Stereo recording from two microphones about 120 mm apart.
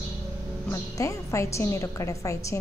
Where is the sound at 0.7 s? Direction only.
25° left (ahead or behind).